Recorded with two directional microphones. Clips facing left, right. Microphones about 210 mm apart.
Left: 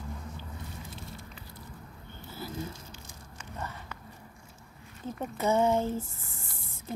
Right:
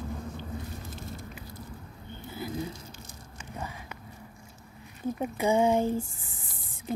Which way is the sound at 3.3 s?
10° right (ahead or behind).